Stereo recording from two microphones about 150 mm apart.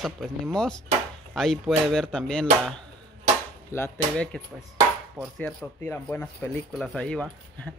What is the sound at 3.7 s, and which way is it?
Speech, 20° left (ahead or behind).